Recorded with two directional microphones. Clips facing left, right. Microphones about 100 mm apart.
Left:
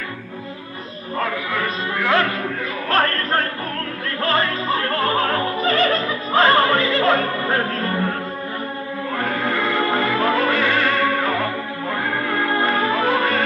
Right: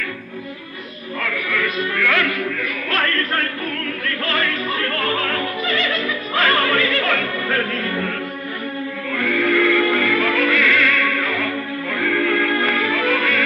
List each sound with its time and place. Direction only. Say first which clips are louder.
1.2 s music: even; 30° left (ahead or behind)
9.1 s music: right 4 dB; 30° left (ahead or behind)